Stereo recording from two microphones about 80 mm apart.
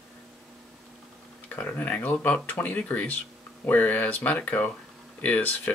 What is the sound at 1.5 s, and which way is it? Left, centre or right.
Speech, left.